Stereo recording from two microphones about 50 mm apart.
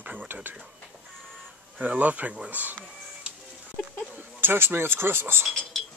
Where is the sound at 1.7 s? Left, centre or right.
Right.